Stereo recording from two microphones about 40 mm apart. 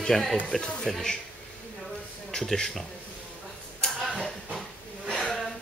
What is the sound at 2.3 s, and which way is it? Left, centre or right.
Speech, centre.